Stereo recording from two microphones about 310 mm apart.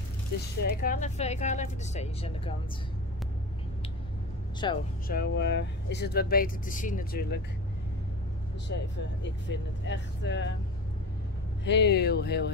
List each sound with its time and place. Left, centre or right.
0.6 s speech: left
4.6 s speech: centre
5.0 s speech: left
9.2 s speech: left
11.6 s speech: left